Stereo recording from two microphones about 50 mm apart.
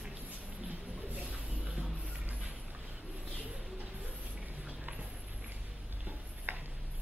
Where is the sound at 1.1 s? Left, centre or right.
Right.